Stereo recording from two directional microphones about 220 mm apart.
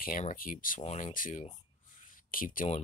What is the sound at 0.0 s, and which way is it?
Speech, 35° left (ahead or behind).